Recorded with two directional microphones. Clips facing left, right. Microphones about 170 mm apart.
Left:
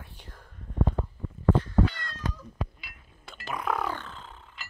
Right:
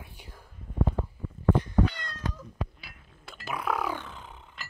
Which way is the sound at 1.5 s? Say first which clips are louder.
Left 1 dB; 15° right (ahead or behind).